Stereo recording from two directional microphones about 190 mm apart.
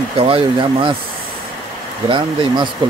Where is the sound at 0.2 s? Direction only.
25° right (ahead or behind).